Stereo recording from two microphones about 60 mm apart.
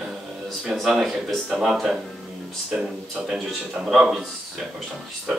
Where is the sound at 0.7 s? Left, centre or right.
Centre.